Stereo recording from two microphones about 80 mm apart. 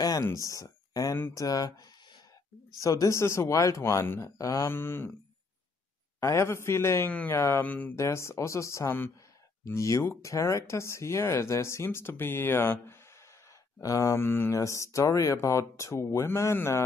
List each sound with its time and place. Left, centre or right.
0.0 s a sound: left
0.5 s speech: left
2.8 s speech: left
6.1 s speech: left
7.1 s speech: centre
7.3 s speech: left
7.6 s speech: left
7.9 s speech: left
13.7 s speech: left
14.5 s speech: left